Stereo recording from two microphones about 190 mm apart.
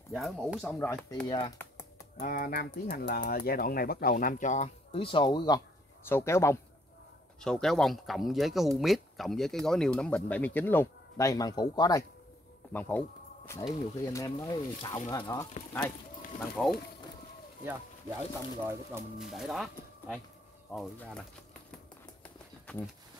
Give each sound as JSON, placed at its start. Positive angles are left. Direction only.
{"t": 0.1, "sound": "speech", "side_deg": 0}
{"t": 1.2, "sound": "speech", "side_deg": 25}
{"t": 2.1, "sound": "speech", "side_deg": 45}
{"t": 4.9, "sound": "speech", "side_deg": 25}
{"t": 6.0, "sound": "speech", "side_deg": 15}
{"t": 7.3, "sound": "speech", "side_deg": 5}
{"t": 12.7, "sound": "speech", "side_deg": 10}
{"t": 14.0, "sound": "speech", "side_deg": 15}
{"t": 16.6, "sound": "speech", "side_deg": 5}
{"t": 17.6, "sound": "speech", "side_deg": -10}
{"t": 19.1, "sound": "speech", "side_deg": 0}